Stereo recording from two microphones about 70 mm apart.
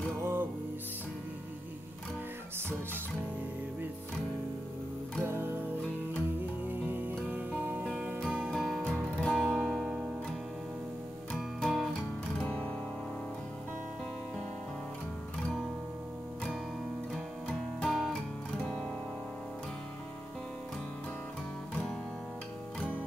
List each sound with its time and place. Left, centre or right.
0.2 s music: right
5.2 s music: right
6.7 s music: right
8.5 s music: centre
11.3 s music: centre
12.4 s music: centre
17.8 s music: centre